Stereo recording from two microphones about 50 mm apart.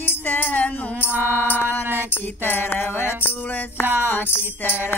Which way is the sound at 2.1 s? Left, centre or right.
Left.